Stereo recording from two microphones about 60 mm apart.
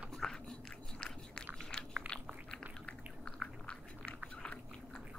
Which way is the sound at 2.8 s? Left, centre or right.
Centre.